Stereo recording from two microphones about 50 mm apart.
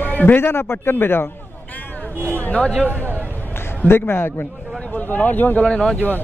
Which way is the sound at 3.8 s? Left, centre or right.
Left.